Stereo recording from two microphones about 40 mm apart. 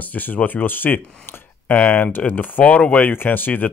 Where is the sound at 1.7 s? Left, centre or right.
Left.